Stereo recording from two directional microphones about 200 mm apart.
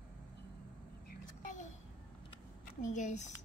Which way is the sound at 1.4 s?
40° left (ahead or behind).